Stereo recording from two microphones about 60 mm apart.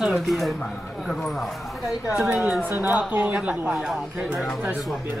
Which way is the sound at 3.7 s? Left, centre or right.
Centre.